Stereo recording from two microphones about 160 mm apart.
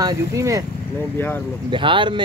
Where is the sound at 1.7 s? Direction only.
30° right (ahead or behind).